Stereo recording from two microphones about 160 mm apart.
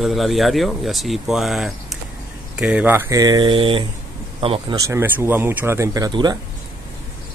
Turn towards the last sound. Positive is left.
turn(degrees=-25)  # may be behind; listen again after turning